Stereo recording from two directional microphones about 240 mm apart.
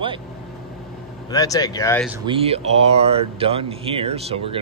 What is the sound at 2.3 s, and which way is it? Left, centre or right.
Speech, right.